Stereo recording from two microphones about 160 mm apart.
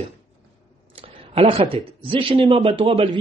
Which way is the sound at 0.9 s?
35° right (ahead or behind).